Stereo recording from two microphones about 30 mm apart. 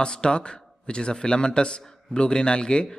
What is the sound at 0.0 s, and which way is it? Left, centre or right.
Speech, left.